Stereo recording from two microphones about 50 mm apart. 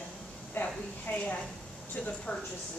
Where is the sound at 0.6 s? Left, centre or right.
Left.